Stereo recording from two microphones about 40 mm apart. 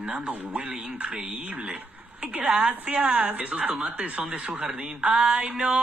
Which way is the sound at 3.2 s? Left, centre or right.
Right.